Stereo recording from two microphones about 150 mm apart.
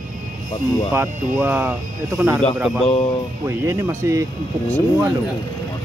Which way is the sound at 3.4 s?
20° right (ahead or behind).